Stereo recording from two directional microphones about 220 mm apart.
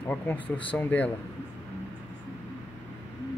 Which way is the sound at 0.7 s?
5° left (ahead or behind).